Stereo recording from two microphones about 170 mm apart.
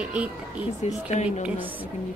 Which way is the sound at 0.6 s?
40° left (ahead or behind).